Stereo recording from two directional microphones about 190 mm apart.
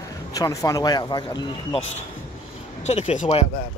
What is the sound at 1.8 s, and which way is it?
Speech, 35° left (ahead or behind).